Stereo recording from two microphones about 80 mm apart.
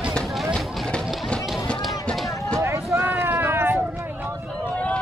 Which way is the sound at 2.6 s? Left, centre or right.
Right.